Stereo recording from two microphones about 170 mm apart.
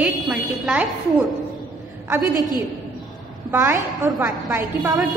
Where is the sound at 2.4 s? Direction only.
25° left (ahead or behind).